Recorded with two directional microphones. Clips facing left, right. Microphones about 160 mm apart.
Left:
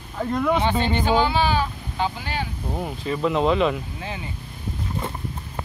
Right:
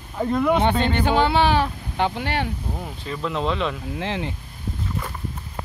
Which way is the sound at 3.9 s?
80° right.